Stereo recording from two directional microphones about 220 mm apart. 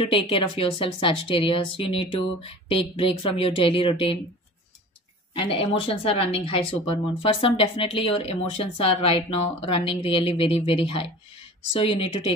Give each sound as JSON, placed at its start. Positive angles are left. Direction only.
{"t": 0.0, "sound": "speech", "side_deg": 25}
{"t": 5.3, "sound": "speech", "side_deg": 25}